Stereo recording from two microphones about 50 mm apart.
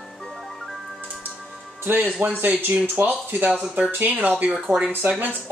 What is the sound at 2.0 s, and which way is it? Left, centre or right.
Speech, right.